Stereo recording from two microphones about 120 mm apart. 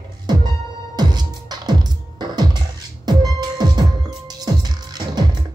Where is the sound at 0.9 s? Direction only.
35° right (ahead or behind).